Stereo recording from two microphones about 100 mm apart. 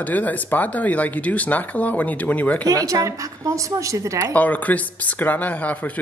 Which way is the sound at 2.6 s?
35° right (ahead or behind).